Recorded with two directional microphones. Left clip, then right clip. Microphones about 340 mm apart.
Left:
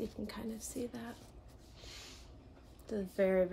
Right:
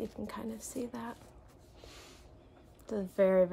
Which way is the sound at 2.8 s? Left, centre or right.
Centre.